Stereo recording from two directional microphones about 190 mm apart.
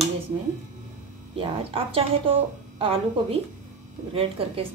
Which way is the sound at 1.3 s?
30° right (ahead or behind).